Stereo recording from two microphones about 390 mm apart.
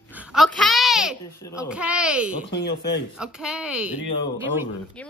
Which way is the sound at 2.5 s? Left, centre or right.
Left.